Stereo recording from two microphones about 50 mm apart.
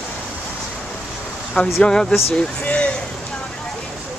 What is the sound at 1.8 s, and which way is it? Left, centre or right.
Speech, centre.